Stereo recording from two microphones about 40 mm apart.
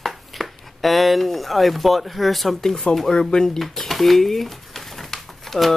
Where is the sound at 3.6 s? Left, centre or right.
Centre.